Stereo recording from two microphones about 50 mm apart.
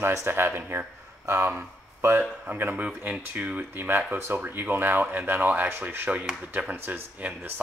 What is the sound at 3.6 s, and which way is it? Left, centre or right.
Speech, right.